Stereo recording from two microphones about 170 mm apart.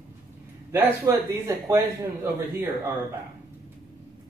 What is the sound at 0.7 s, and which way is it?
A man's voice, 15° right (ahead or behind).